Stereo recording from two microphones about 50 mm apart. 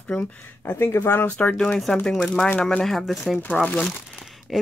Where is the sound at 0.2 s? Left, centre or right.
Left.